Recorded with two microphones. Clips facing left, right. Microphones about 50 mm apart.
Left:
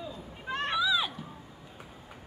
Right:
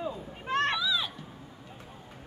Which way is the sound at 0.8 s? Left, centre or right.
Centre.